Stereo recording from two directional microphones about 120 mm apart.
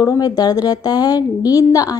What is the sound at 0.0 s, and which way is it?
Speech, 30° left (ahead or behind).